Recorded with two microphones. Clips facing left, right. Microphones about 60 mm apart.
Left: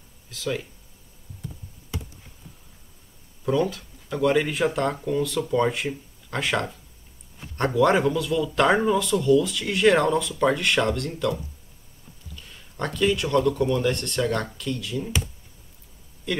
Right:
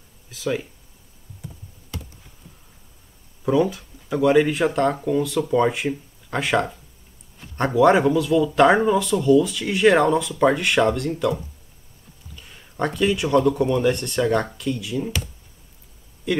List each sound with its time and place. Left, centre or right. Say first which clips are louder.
0.3 s speech: right 4 dB; centre
1.9 s computer keyboard: left 1 dB; centre
3.4 s speech: right 4 dB; centre
12.4 s speech: right 5 dB; centre
16.3 s speech: right 5 dB; centre